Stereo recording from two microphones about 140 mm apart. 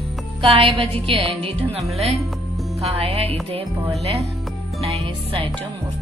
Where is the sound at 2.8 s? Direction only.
45° right (ahead or behind).